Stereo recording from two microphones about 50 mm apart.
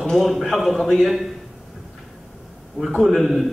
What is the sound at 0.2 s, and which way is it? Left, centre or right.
A man's voice, centre.